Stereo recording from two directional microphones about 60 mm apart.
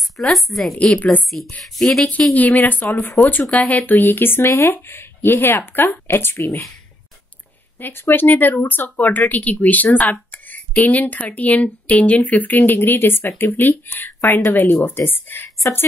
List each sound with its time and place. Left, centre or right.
0.2 s a woman's voice: centre
0.7 s speech: left
1.6 s a woman's voice: centre
2.3 s speech: left
7.8 s speech: left